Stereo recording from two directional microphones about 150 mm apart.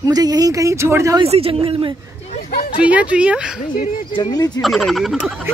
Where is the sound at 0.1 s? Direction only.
25° right (ahead or behind).